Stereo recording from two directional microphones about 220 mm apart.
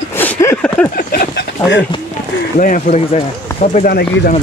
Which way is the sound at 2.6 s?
35° left (ahead or behind).